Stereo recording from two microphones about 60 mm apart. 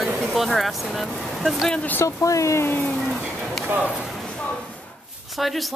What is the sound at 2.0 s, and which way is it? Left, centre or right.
Speech, left.